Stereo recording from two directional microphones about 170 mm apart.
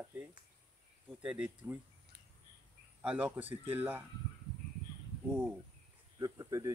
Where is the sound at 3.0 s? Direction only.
10° right (ahead or behind).